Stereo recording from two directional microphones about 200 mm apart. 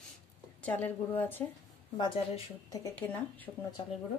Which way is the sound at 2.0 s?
25° left (ahead or behind).